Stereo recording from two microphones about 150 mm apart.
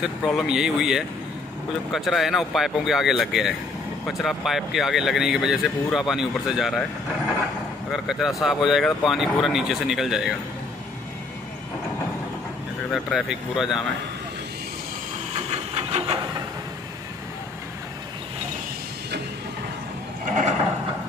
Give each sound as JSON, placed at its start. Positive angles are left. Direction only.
{"t": 0.0, "sound": "speech", "side_deg": 0}
{"t": 7.9, "sound": "speech", "side_deg": 0}
{"t": 12.9, "sound": "speech", "side_deg": 0}
{"t": 15.3, "sound": "hiss", "side_deg": -45}